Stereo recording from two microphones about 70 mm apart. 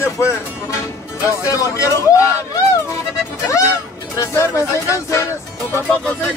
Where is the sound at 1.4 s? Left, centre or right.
Left.